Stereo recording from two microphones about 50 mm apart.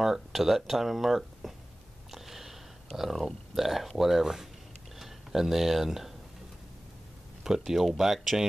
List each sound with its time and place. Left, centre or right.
0.0 s speech: centre
2.0 s sniff: centre
3.0 s speech: centre
4.9 s a sound: centre
7.4 s speech: centre